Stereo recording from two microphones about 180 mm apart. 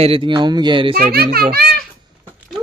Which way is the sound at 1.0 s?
55° right (ahead or behind).